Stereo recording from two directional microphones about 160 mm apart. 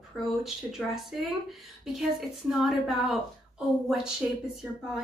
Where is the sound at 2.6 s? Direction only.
Centre (ahead or behind).